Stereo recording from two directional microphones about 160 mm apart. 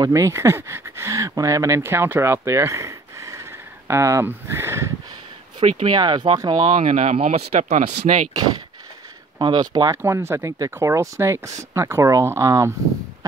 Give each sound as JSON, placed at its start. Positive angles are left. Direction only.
{"t": 0.0, "sound": "speech", "side_deg": -20}
{"t": 5.6, "sound": "speech", "side_deg": -40}
{"t": 6.8, "sound": "speech", "side_deg": -50}
{"t": 9.4, "sound": "speech", "side_deg": -25}
{"t": 10.0, "sound": "speech", "side_deg": -15}